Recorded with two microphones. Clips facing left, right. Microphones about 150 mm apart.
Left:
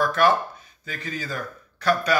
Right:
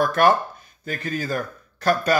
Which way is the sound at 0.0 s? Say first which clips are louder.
Right 2 dB; 50° right (ahead or behind).